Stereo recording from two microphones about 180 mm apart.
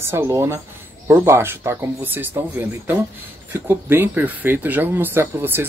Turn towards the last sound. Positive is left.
turn(degrees=-10)  # may be behind; listen again after turning